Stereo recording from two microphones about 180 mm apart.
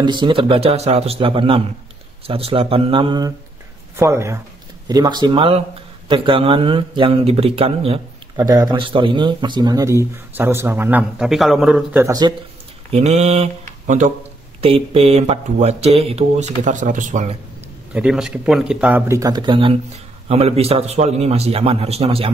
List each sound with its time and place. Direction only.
0.0 s a man's voice: 25° right (ahead or behind)
8.4 s speech: 20° right (ahead or behind)
12.9 s speech: 40° right (ahead or behind)
14.6 s speech: 35° right (ahead or behind)
17.9 s speech: 5° right (ahead or behind); by 22.3 s 35° right (ahead or behind)